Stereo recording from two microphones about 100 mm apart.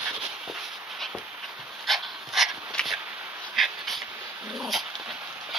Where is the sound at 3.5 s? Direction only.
Centre (ahead or behind).